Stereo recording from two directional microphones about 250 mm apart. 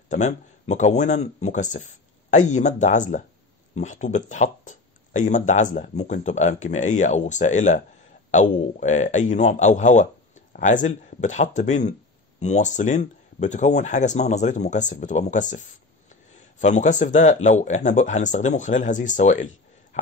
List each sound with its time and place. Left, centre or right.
0.1 s speech: left